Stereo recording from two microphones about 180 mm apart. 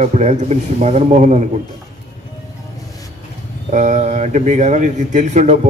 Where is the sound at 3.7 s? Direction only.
45° right (ahead or behind).